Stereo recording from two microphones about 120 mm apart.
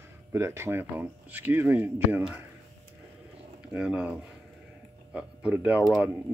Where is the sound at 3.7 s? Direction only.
10° right (ahead or behind).